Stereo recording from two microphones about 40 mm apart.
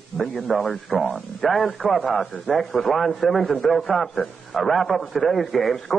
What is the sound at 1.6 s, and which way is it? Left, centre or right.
Speech, left.